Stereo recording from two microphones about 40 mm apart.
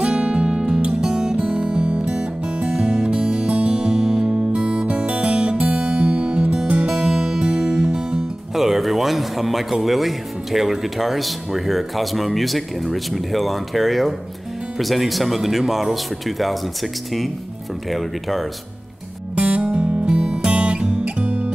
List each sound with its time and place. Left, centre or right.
0.0 s music: right
8.5 s speech: centre
19.4 s music: right